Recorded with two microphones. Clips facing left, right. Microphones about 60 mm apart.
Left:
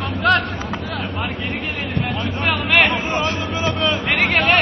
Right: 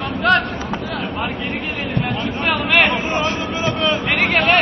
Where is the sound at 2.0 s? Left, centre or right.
Centre.